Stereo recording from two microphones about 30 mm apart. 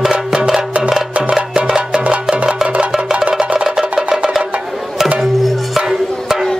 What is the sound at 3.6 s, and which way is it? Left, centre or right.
Music, centre.